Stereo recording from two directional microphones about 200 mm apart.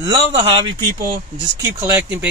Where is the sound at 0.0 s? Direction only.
25° right (ahead or behind).